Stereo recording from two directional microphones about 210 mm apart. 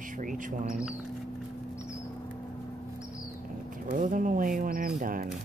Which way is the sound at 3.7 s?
40° right (ahead or behind).